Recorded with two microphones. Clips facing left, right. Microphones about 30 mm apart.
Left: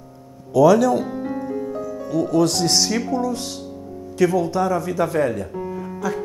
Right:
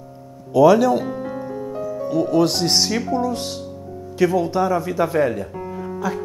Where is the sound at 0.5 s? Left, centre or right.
Centre.